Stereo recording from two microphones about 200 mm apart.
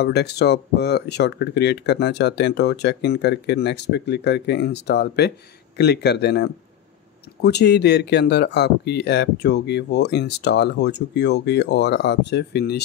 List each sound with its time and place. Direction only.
0.0 s speech: 55° left (ahead or behind)